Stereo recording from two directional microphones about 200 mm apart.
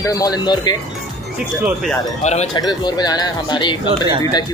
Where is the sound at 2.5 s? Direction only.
20° left (ahead or behind).